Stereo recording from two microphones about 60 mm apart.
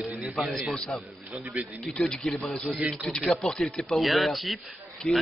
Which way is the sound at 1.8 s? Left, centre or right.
Centre.